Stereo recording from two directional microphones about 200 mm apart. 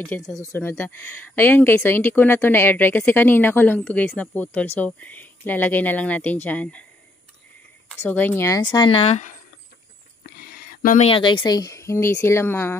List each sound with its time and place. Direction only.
0.1 s speech: centre (ahead or behind)
0.4 s speech: 10° left (ahead or behind)
8.0 s speech: 10° left (ahead or behind); by 9.4 s 35° left (ahead or behind)
10.2 s a sound: 50° left (ahead or behind)
11.1 s speech: 25° left (ahead or behind)